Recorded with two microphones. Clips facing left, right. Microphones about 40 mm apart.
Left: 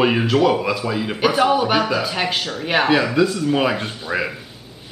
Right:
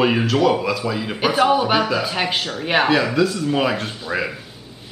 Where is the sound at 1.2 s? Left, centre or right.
Centre.